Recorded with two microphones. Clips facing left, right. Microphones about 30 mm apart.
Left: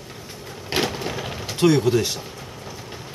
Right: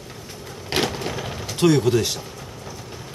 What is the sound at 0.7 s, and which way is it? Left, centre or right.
Crushing, centre.